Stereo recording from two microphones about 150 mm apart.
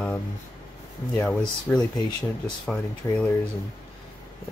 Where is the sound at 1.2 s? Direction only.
5° left (ahead or behind).